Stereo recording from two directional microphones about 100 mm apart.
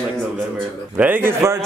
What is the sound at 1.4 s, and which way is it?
Speech, 25° right (ahead or behind).